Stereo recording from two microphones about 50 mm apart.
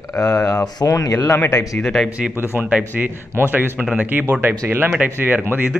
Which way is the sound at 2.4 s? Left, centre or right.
Right.